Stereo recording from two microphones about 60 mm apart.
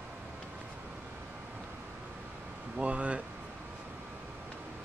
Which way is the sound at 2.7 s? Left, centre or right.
Right.